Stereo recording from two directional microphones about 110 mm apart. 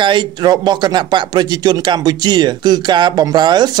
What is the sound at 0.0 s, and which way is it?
Speech, 45° right (ahead or behind).